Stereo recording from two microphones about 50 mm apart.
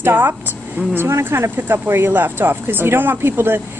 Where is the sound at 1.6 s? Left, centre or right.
Right.